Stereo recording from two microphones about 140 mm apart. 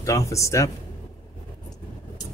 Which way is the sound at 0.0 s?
20° left (ahead or behind).